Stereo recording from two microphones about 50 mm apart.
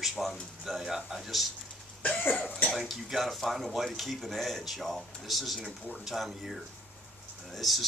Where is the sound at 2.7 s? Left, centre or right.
Centre.